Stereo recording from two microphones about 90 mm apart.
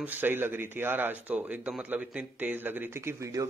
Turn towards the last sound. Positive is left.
turn(degrees=-35)  # may be behind; listen again after turning